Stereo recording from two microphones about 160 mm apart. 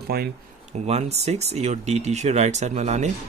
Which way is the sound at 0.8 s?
40° right (ahead or behind).